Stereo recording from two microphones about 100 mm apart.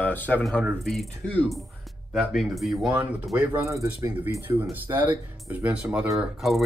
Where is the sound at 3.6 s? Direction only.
30° right (ahead or behind); by 6.1 s 15° right (ahead or behind).